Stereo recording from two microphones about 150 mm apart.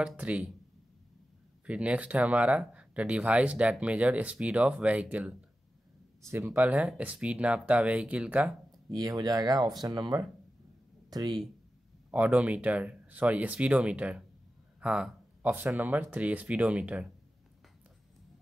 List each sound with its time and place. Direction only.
0.0 s speech: 5° right (ahead or behind)
1.7 s speech: 10° right (ahead or behind)
6.2 s speech: 15° right (ahead or behind)
8.9 s speech: 25° right (ahead or behind)
12.1 s speech: 10° right (ahead or behind)